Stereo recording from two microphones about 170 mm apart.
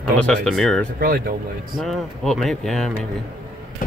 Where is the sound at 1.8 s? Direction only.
Centre (ahead or behind).